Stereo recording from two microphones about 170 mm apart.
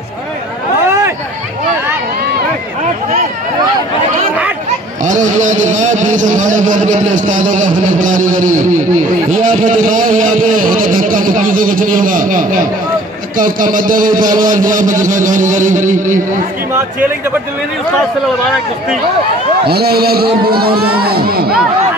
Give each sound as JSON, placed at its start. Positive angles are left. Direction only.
{"t": 5.0, "sound": "a sound", "side_deg": -45}
{"t": 13.4, "sound": "a man's voice", "side_deg": -55}
{"t": 19.7, "sound": "speech", "side_deg": -65}